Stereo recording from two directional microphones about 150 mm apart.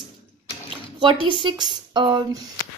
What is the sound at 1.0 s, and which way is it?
A woman's voice, 30° right (ahead or behind).